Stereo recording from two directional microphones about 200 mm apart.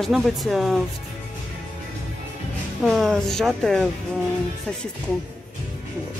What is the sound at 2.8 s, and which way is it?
Speech, centre (ahead or behind).